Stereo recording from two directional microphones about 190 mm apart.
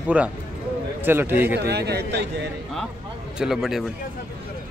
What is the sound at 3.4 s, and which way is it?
Speech, centre (ahead or behind).